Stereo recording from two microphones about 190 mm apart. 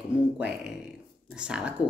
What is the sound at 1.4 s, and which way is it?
Speech, 5° right (ahead or behind).